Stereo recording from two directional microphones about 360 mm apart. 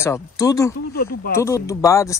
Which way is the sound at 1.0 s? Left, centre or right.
Left.